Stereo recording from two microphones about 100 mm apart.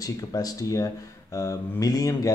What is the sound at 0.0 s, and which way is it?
Speech, 35° left (ahead or behind).